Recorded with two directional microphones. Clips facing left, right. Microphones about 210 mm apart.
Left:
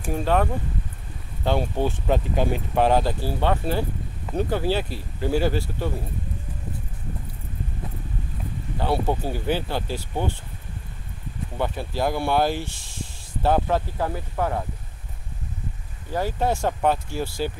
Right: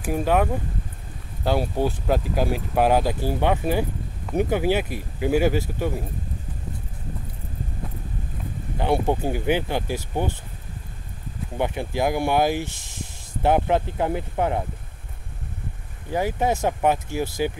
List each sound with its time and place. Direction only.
0.0 s speech: 10° right (ahead or behind)
8.7 s speech: 15° right (ahead or behind)
11.5 s speech: 15° right (ahead or behind)
16.1 s speech: 15° right (ahead or behind)